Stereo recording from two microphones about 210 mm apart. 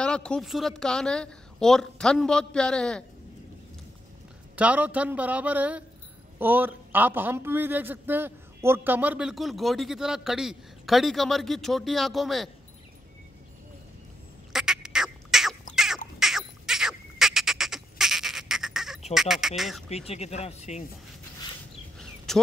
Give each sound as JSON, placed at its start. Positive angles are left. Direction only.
{"t": 0.0, "sound": "a man's voice", "side_deg": 5}
{"t": 4.6, "sound": "a man's voice", "side_deg": -5}
{"t": 14.5, "sound": "fowl", "side_deg": -5}
{"t": 15.7, "sound": "a sound", "side_deg": 0}
{"t": 19.1, "sound": "a man's voice", "side_deg": 0}
{"t": 20.1, "sound": "speech", "side_deg": 30}
{"t": 21.9, "sound": "a sound", "side_deg": 0}